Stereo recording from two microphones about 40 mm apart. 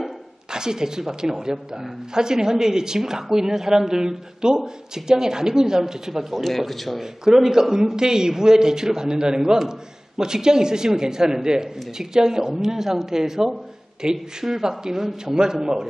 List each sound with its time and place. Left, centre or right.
0.5 s a man's voice: centre
6.4 s speech: centre
7.0 s a man's voice: centre